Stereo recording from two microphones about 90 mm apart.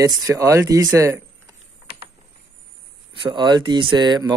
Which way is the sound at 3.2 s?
60° right (ahead or behind).